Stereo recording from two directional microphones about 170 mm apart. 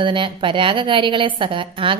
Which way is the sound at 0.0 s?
30° right (ahead or behind).